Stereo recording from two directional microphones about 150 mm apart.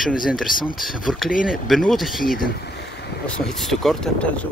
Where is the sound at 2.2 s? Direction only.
70° left (ahead or behind); by 3.1 s 90° left.